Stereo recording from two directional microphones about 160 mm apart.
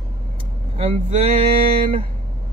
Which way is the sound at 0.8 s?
40° right (ahead or behind).